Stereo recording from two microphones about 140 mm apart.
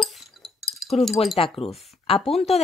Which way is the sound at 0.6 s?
Centre (ahead or behind).